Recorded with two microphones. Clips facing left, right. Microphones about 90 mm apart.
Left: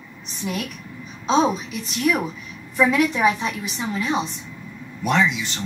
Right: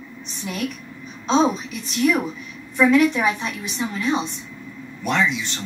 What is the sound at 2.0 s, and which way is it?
A woman's voice, 5° left (ahead or behind).